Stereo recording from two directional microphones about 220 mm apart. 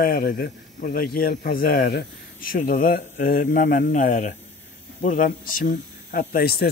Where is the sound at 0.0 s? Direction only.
45° left (ahead or behind).